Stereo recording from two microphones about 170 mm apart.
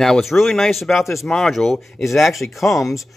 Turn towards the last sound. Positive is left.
turn(degrees=0)  # may be behind; listen again after turning